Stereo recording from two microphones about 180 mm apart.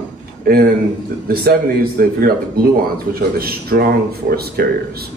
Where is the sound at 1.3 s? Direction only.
55° right (ahead or behind).